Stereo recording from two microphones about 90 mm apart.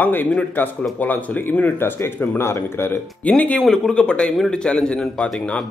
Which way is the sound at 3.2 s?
15° left (ahead or behind).